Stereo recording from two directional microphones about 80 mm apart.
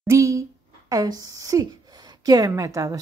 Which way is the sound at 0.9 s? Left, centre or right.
Right.